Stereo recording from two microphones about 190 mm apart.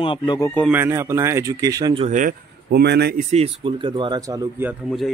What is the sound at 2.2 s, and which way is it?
Speech, 50° right (ahead or behind).